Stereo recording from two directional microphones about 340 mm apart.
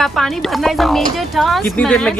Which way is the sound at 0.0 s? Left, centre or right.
Centre.